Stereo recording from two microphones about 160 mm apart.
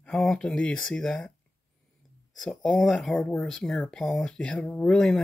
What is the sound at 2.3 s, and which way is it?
Speech, centre (ahead or behind).